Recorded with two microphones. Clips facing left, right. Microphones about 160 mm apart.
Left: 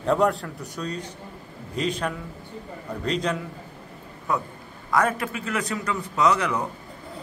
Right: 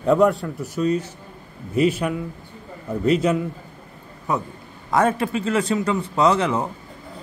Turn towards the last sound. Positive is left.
turn(degrees=-25)  # may be behind; listen again after turning